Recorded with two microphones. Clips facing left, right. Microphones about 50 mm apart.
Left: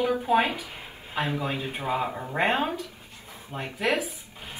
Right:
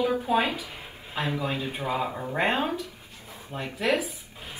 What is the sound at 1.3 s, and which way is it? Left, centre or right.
Speech, left.